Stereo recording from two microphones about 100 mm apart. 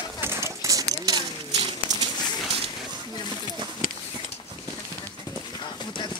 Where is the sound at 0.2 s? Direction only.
25° right (ahead or behind).